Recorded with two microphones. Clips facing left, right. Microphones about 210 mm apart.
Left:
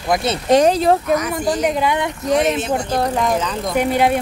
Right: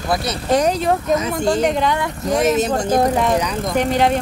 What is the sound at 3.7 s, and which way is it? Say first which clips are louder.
Speech: left 1 dB; 10° left (ahead or behind).